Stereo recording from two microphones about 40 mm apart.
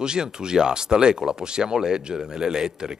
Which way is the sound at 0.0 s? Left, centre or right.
Centre.